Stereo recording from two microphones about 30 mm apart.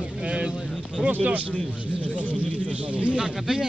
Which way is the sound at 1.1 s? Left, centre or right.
Right.